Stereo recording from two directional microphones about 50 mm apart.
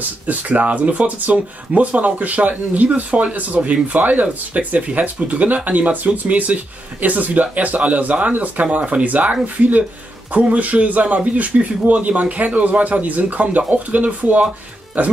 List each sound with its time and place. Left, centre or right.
0.0 s speech: right